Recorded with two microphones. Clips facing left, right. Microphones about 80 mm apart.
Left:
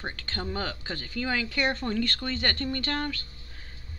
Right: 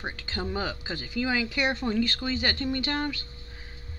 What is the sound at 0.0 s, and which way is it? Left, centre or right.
Speech, centre.